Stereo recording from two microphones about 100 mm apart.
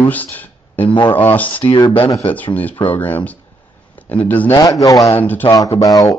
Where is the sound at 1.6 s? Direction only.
50° left (ahead or behind).